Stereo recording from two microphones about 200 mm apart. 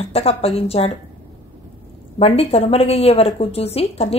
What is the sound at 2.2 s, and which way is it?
A woman's voice, 30° left (ahead or behind).